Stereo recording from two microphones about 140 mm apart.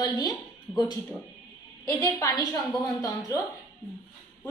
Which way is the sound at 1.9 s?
25° left (ahead or behind).